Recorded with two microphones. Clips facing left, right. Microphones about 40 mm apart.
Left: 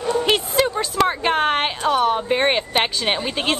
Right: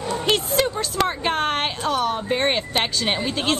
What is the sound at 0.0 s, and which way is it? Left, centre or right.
A woman's voice, centre.